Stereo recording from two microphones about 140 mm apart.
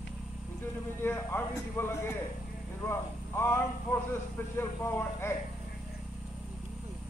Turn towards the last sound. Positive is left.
turn(degrees=15)  # may be behind; listen again after turning